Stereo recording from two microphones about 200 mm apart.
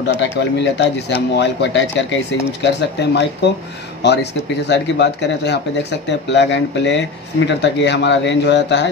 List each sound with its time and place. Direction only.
0.0 s speech: 60° left (ahead or behind)